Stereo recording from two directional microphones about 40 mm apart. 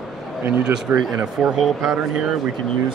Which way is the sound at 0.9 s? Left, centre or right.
Right.